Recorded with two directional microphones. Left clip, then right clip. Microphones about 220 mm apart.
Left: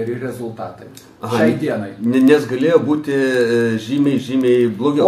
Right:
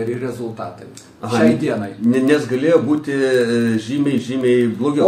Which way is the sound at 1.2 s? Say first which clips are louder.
Even; 15° left (ahead or behind).